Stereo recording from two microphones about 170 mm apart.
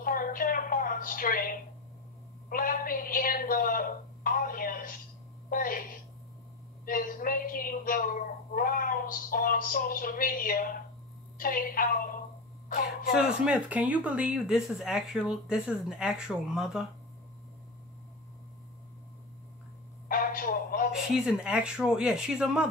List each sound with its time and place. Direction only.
0.0 s a sound: 55° left (ahead or behind)
2.5 s a woman's voice: 55° left (ahead or behind)
6.9 s a woman's voice: 55° left (ahead or behind)
13.5 s speech: 10° right (ahead or behind)
20.1 s a sound: 55° left (ahead or behind)
20.9 s speech: 5° right (ahead or behind)